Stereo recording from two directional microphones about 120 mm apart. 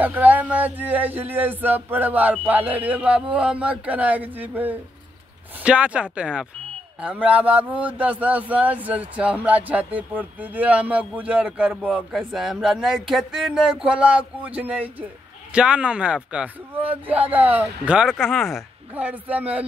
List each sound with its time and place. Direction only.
0.0 s speech: 15° right (ahead or behind)
18.9 s speech: 15° right (ahead or behind)